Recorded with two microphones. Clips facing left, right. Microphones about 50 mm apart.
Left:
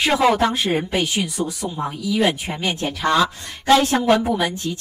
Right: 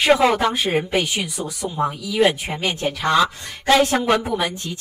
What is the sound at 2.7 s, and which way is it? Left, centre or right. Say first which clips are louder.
A woman's voice: right 1 dB; centre.